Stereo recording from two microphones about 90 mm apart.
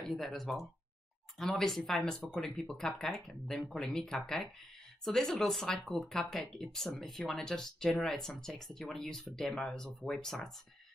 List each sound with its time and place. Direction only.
0.0 s speech: 5° left (ahead or behind)